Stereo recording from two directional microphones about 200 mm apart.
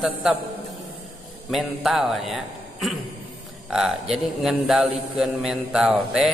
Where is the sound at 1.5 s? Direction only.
Centre (ahead or behind).